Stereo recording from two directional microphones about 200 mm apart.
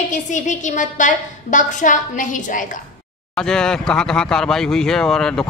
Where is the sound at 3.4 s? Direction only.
5° left (ahead or behind).